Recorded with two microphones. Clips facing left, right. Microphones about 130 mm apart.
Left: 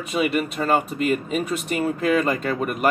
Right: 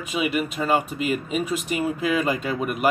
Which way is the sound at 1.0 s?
40° left (ahead or behind).